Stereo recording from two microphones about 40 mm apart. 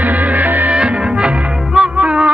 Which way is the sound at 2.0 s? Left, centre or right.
Right.